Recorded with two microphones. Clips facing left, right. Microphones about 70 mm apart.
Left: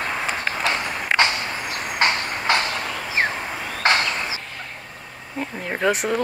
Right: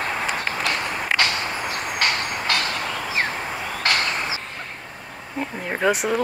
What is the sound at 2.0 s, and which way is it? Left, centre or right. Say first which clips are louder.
Train: left 4 dB; left.